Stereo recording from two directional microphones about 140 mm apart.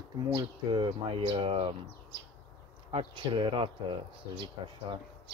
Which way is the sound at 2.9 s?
40° right (ahead or behind).